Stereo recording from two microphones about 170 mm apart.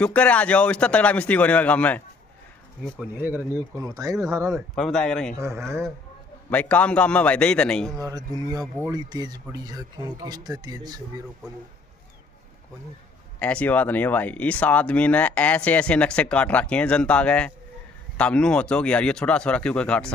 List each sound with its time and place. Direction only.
0.0 s speech: 10° left (ahead or behind)
3.2 s speech: 10° right (ahead or behind)
4.6 s speech: centre (ahead or behind)
6.5 s speech: 10° left (ahead or behind)
8.5 s speech: 15° right (ahead or behind)
13.4 s speech: 10° left (ahead or behind)